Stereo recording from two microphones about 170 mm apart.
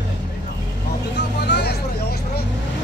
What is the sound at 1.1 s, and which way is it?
Vehicle, 75° left (ahead or behind).